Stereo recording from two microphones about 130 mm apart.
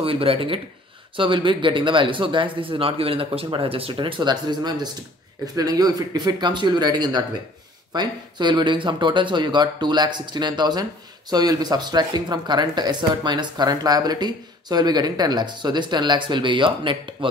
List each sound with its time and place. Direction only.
0.0 s speech: 45° right (ahead or behind)